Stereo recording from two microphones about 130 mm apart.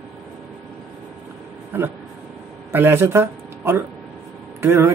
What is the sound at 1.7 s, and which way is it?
Speech, 15° right (ahead or behind).